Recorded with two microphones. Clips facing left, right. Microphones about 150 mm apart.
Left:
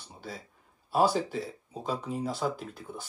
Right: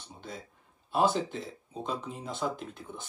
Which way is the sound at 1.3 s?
5° left (ahead or behind).